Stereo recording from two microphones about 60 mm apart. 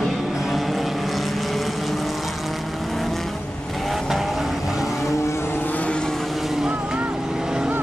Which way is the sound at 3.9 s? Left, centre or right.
Centre.